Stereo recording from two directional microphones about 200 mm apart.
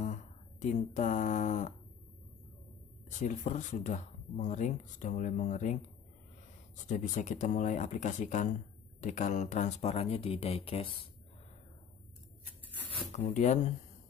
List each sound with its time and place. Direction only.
0.0 s speech: 35° left (ahead or behind)
3.1 s speech: 40° left (ahead or behind)
6.9 s speech: 40° left (ahead or behind)
13.1 s speech: 35° left (ahead or behind)